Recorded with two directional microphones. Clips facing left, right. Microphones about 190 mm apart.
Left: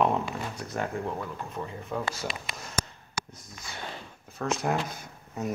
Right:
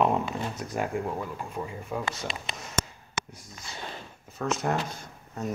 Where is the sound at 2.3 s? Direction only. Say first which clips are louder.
Right 1 dB; 25° right (ahead or behind).